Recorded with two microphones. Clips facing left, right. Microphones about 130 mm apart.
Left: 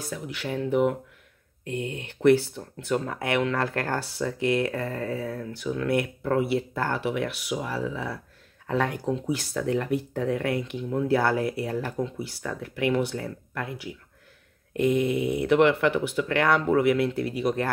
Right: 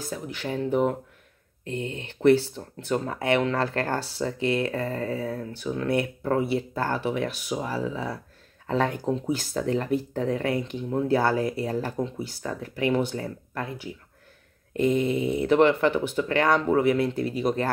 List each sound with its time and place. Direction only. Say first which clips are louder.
0.1 s speech: even; 35° right (ahead or behind)
2.0 s speech: even; 30° right (ahead or behind)
3.8 s speech: right 1 dB; 20° right (ahead or behind)